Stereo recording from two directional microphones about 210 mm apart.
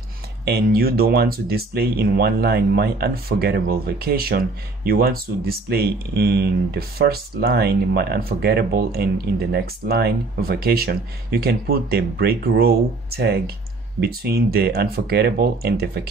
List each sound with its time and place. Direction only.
0.5 s speech: 45° right (ahead or behind)